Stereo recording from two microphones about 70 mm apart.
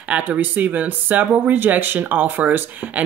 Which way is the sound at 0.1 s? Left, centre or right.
Right.